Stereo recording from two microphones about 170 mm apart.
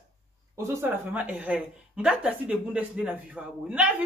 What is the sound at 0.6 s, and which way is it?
Speech, 15° right (ahead or behind).